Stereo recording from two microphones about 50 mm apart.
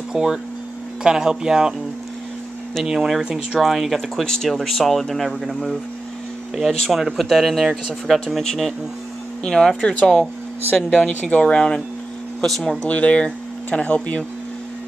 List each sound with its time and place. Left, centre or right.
0.1 s speech: centre
2.8 s speech: centre
6.9 s speech: centre; by 11.6 s left
12.4 s speech: centre
12.8 s speech: left